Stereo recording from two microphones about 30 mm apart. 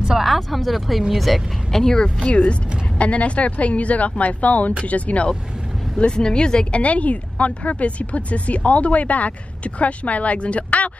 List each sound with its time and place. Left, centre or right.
0.1 s speech: centre
1.7 s speech: centre
2.2 s speech: left
5.9 s speech: left
6.7 s speech: left